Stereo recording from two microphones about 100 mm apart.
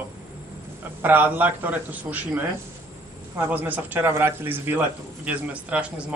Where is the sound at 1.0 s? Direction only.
20° right (ahead or behind).